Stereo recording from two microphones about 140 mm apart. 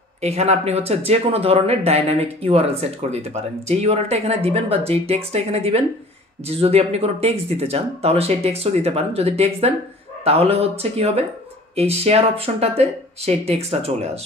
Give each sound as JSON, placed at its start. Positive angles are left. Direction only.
{"t": 0.2, "sound": "speech", "side_deg": -50}